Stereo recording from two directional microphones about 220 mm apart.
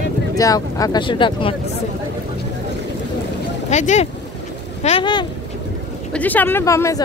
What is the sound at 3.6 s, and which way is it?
Speech, 30° left (ahead or behind).